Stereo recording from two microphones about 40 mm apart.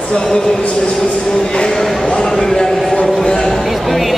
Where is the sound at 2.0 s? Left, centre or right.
Left.